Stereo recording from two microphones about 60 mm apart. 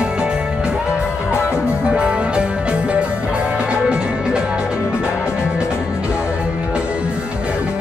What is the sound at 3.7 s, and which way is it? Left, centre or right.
Music, centre.